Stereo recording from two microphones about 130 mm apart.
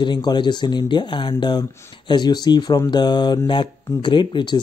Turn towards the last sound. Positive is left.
turn(degrees=40)  # may be behind; listen again after turning